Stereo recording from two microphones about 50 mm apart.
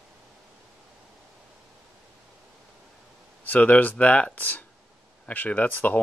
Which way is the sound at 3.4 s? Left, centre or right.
Left.